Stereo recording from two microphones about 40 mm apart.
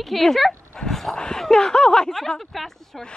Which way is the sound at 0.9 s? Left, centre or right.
Centre.